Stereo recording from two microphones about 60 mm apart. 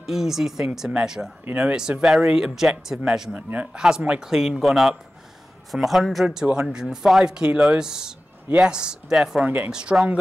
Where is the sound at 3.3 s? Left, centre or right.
Right.